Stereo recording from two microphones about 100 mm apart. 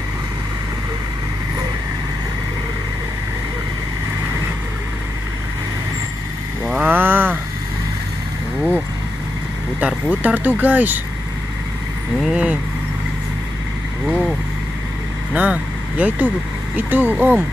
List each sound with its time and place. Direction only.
6.8 s a sound: 20° right (ahead or behind)
9.8 s speech: 10° right (ahead or behind)
12.2 s speech: 10° right (ahead or behind)
14.0 s vehicle: 15° right (ahead or behind)
15.3 s vehicle: 15° right (ahead or behind)
16.7 s speech: 15° right (ahead or behind)